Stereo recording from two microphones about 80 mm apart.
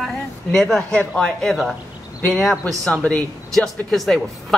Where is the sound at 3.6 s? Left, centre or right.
Centre.